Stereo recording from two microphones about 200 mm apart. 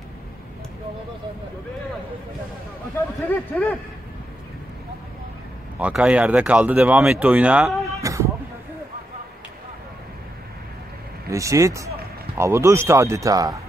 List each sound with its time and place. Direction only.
3.3 s speech: 10° left (ahead or behind)
5.8 s speech: 5° right (ahead or behind)
11.2 s speech: 15° right (ahead or behind)